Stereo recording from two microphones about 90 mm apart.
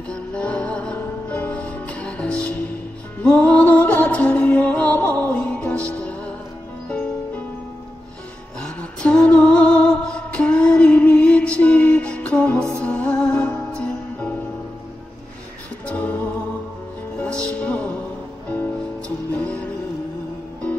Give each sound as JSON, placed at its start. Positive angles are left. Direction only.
{"t": 0.1, "sound": "music", "side_deg": 15}
{"t": 6.9, "sound": "music", "side_deg": 15}
{"t": 8.5, "sound": "music", "side_deg": 10}
{"t": 15.9, "sound": "music", "side_deg": 15}